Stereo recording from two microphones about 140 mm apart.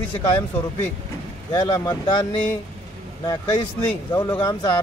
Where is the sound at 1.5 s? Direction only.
30° left (ahead or behind).